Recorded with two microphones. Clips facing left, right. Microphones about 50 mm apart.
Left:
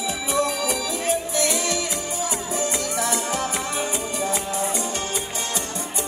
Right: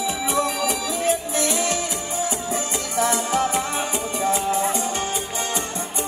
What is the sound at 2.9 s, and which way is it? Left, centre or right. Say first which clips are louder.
Music: right 7 dB; right.